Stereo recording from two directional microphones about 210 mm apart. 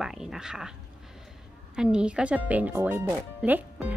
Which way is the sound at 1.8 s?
5° right (ahead or behind).